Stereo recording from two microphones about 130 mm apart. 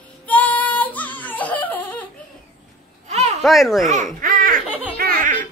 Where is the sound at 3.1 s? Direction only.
60° right (ahead or behind).